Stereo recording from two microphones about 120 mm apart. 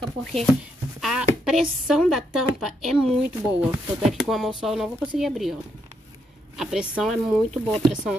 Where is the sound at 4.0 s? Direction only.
Centre (ahead or behind).